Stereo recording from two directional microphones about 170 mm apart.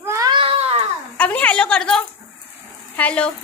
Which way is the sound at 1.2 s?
10° left (ahead or behind).